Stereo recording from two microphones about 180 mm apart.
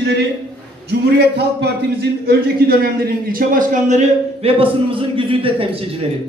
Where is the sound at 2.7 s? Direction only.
55° right (ahead or behind).